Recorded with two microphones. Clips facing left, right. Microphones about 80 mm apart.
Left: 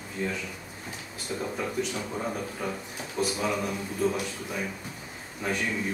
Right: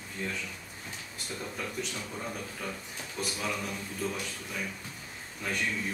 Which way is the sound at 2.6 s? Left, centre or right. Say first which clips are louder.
Left 5 dB; centre.